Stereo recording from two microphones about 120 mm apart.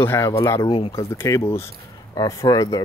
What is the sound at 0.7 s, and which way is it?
Speech, 55° left (ahead or behind).